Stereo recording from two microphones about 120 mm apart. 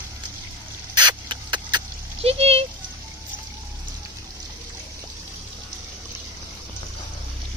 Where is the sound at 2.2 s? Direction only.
55° right (ahead or behind).